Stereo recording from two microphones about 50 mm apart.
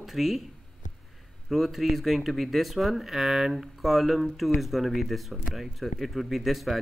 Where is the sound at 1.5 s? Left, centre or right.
Centre.